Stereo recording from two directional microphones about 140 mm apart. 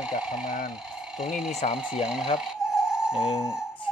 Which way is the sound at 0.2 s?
5° right (ahead or behind).